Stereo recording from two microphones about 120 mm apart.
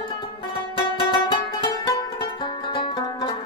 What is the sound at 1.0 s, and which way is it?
Music, 40° left (ahead or behind).